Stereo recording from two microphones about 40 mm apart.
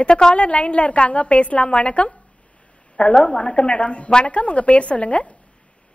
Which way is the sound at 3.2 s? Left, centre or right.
Left.